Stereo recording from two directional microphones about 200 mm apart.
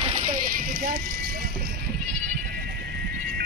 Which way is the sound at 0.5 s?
45° right (ahead or behind).